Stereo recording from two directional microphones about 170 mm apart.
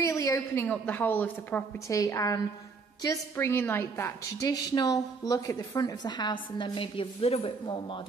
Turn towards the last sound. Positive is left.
turn(degrees=30)  # may be behind; listen again after turning